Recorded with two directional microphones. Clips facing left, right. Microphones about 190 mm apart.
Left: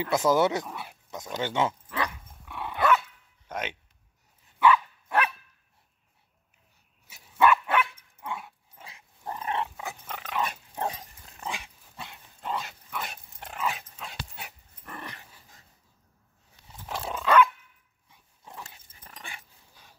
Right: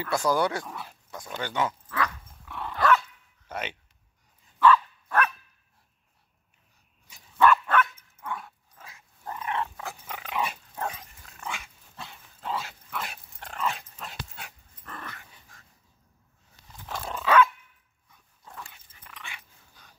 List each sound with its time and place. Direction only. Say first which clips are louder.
0.0 s speech: left 2 dB; 20° left (ahead or behind)
0.7 s speech: left 1 dB; 5° left (ahead or behind)
1.1 s speech: left 2 dB; 20° left (ahead or behind)
2.4 s dog: even; 5° left (ahead or behind)
3.4 s a sound: left 1 dB; 10° right (ahead or behind)
4.6 s dog: right 1 dB; 15° left (ahead or behind)
7.1 s dog: right 1 dB; 5° left (ahead or behind)
8.7 s dog: left 1 dB; 20° left (ahead or behind)
9.8 s dog: even; 10° right (ahead or behind)
10.7 s dog: left 2 dB; 30° left (ahead or behind)
12.0 s dog: even; centre (ahead or behind); by 15.2 s 15° left (ahead or behind)
16.8 s dog: left 1 dB; 10° left (ahead or behind)
18.4 s dog: even; 20° left (ahead or behind)
18.7 s dog: even; 35° left (ahead or behind)